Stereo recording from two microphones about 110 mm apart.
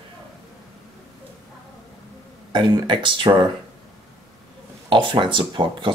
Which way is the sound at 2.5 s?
45° right (ahead or behind).